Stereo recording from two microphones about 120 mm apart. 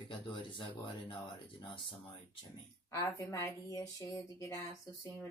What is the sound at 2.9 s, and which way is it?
Speech, 25° left (ahead or behind).